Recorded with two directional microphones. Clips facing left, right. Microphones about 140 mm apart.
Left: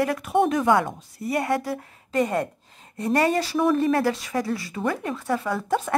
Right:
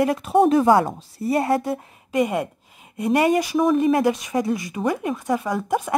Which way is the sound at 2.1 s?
10° right (ahead or behind).